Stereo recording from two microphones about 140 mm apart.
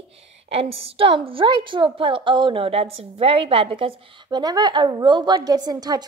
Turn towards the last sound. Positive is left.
turn(degrees=-25)  # may be behind; listen again after turning